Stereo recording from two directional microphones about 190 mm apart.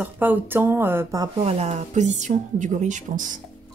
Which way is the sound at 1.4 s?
35° right (ahead or behind).